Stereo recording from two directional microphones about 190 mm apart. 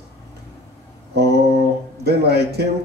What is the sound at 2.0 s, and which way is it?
Speech, 55° right (ahead or behind).